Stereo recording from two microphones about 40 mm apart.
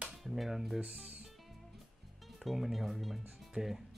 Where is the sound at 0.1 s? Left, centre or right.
Centre.